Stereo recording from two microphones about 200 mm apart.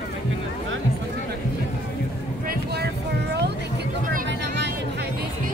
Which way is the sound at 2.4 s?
55° right (ahead or behind).